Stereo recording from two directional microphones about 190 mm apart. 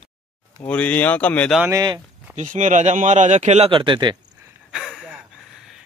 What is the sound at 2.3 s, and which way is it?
Speech, 40° right (ahead or behind).